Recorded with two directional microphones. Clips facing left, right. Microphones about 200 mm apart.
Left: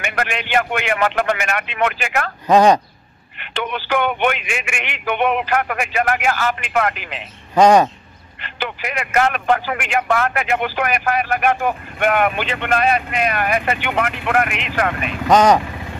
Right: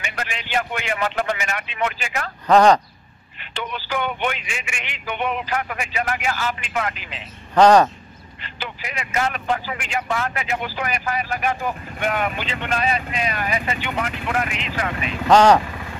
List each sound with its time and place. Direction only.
0.0 s a man's voice: 65° left (ahead or behind)
2.4 s speech: 15° left (ahead or behind)
3.3 s a man's voice: 65° left (ahead or behind)
7.5 s speech: 10° left (ahead or behind)
8.4 s a man's voice: 65° left (ahead or behind)
15.2 s speech: 5° left (ahead or behind)